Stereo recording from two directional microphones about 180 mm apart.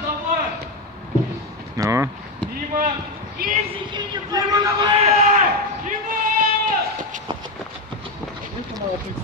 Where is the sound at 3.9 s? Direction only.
25° right (ahead or behind).